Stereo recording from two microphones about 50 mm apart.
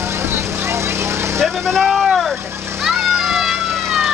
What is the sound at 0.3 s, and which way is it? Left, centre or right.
Vehicle, right.